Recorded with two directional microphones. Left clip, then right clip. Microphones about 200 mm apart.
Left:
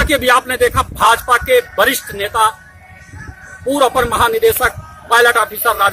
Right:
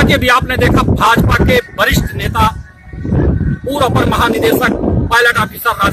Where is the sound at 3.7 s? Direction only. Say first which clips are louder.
Even; centre (ahead or behind).